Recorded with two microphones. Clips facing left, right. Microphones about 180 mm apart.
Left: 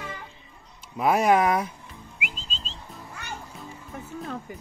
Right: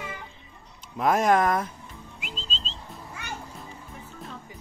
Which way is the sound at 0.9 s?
10° left (ahead or behind).